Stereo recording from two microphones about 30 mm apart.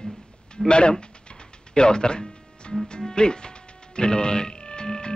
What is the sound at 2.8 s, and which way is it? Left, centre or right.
Speech, left.